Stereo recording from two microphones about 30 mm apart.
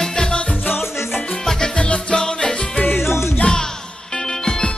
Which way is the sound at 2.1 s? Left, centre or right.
Left.